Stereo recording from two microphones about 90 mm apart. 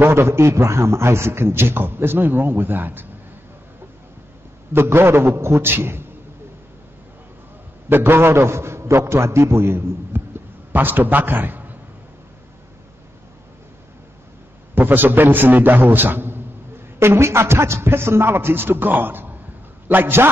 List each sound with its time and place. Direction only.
0.0 s a man's voice: 25° right (ahead or behind)
4.7 s a man's voice: 25° right (ahead or behind)
7.9 s a man's voice: 25° right (ahead or behind)
14.8 s a man's voice: 20° right (ahead or behind)